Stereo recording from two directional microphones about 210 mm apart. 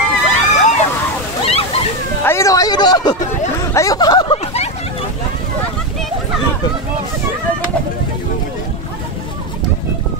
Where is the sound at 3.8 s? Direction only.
15° left (ahead or behind).